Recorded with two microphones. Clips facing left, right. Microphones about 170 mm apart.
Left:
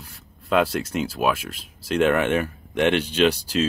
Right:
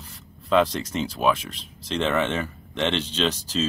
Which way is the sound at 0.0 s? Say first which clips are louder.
Right 1 dB; 10° left (ahead or behind).